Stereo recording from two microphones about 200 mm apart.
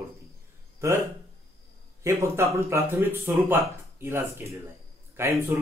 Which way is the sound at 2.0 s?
15° right (ahead or behind).